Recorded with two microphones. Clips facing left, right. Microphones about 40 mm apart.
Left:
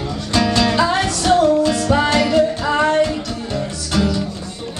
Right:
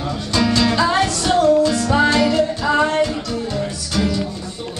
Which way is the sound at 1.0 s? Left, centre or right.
Left.